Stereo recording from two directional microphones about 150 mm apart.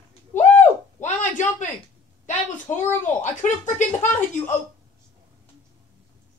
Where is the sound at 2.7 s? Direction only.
55° left (ahead or behind).